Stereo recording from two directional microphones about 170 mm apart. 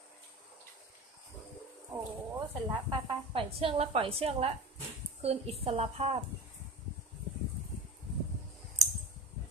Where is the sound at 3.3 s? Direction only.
35° right (ahead or behind).